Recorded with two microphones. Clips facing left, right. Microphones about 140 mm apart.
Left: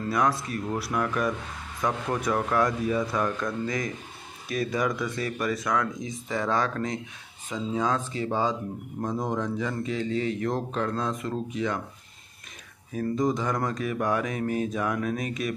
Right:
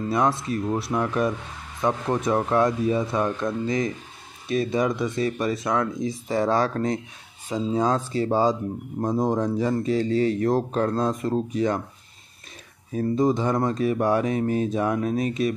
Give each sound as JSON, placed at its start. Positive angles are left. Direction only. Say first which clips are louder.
{"t": 0.1, "sound": "speech", "louder": "right 3 dB", "side_deg": -25}
{"t": 12.9, "sound": "speech", "louder": "right 4 dB", "side_deg": -30}